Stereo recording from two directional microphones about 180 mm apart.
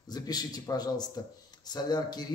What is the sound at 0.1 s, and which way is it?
Speech, 20° left (ahead or behind).